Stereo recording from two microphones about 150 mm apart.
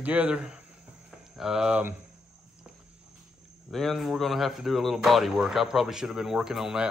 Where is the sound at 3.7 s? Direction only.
Centre (ahead or behind).